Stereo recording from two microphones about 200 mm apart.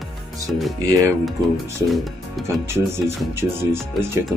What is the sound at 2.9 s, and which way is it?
Speech, 10° right (ahead or behind).